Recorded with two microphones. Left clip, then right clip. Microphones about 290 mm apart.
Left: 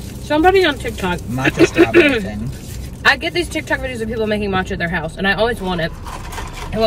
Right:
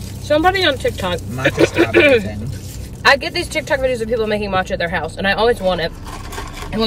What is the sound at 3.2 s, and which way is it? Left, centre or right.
Speech, centre.